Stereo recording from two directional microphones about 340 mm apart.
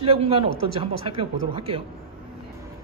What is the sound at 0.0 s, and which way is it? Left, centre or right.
Speech, centre.